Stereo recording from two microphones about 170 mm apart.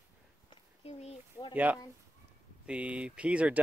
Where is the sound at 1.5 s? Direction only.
10° right (ahead or behind).